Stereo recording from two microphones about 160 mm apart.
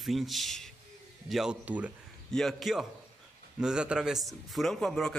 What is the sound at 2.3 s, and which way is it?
Speech, centre (ahead or behind).